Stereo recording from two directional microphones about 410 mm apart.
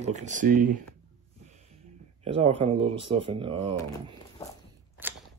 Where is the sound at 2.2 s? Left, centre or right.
Centre.